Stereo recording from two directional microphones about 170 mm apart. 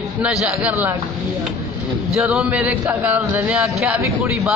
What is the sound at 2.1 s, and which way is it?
Speech, 5° right (ahead or behind).